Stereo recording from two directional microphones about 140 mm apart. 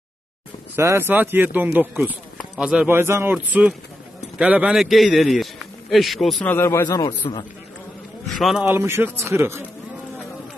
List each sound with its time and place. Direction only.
0.7 s speech: 20° right (ahead or behind)
2.3 s clip-clop: centre (ahead or behind)
2.9 s a man's voice: 20° right (ahead or behind); by 6.5 s centre (ahead or behind)
6.5 s speech: 20° left (ahead or behind)
8.4 s a man's voice: centre (ahead or behind)
8.6 s speech: 15° right (ahead or behind)